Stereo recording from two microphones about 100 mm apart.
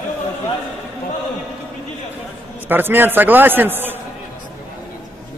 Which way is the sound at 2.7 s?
20° right (ahead or behind).